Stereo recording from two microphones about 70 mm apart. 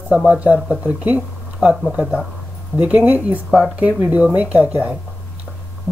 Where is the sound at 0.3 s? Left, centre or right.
Centre.